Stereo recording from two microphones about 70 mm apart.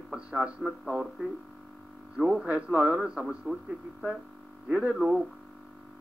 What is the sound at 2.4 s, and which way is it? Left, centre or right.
Speech, centre.